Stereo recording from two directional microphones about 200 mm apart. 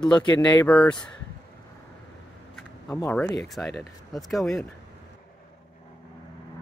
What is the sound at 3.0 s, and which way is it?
Speech, 10° left (ahead or behind).